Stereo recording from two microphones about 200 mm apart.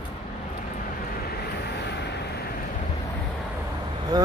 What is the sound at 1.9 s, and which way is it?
Vehicle, 55° left (ahead or behind).